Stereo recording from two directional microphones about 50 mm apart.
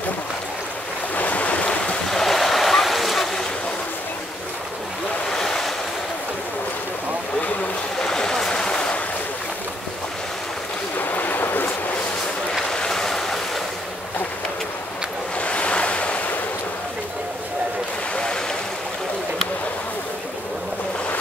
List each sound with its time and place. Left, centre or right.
1.1 s waves: left
2.0 s waves: centre
5.3 s boat: centre
8.0 s a sound: centre
11.0 s boat: left
12.6 s boat: centre
15.3 s waves: left
18.1 s a sound: centre